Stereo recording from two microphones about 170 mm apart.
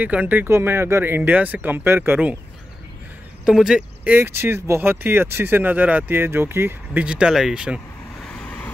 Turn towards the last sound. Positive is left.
turn(degrees=-5)  # may be behind; listen again after turning